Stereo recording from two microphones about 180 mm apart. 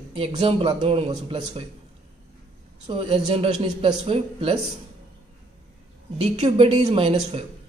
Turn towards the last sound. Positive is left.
turn(degrees=-30)  # may be behind; listen again after turning